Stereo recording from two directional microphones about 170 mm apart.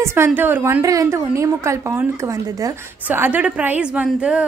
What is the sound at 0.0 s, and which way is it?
A woman's voice, 15° right (ahead or behind).